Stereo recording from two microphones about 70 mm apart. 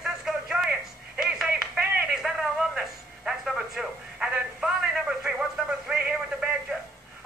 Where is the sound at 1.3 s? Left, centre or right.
Centre.